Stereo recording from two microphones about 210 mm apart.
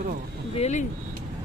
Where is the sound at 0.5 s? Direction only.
30° left (ahead or behind).